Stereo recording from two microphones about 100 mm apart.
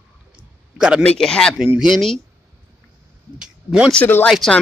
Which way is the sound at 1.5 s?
10° right (ahead or behind).